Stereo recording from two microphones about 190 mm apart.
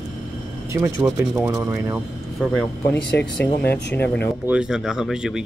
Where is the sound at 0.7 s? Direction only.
15° right (ahead or behind).